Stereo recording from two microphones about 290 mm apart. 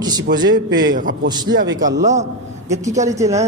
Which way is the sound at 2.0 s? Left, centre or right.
Right.